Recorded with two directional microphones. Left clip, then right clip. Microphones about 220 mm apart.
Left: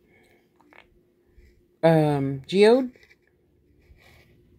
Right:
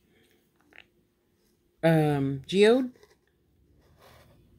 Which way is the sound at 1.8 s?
5° left (ahead or behind).